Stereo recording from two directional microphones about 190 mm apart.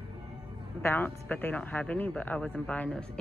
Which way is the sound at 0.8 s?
10° left (ahead or behind).